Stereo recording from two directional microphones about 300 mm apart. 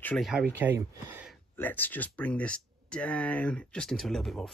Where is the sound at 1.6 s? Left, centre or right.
Centre.